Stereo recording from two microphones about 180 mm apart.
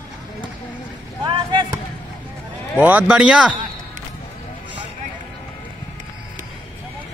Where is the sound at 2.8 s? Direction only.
10° right (ahead or behind).